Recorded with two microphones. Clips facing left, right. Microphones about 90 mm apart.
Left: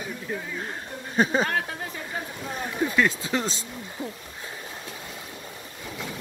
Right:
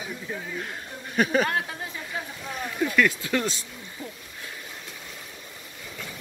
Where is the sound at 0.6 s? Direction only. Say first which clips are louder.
Left 1 dB; 30° left (ahead or behind).